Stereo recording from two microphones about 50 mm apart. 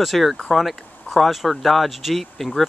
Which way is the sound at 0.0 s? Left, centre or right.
Centre.